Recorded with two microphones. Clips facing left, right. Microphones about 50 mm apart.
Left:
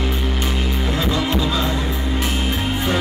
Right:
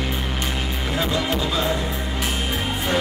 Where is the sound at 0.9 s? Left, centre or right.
Centre.